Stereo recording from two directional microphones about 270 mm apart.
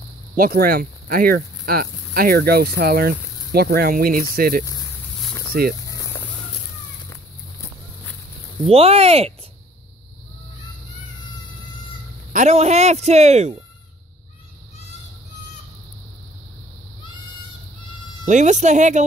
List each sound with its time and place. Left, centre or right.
0.4 s speech: right
8.6 s speech: right
12.3 s speech: right
18.2 s speech: right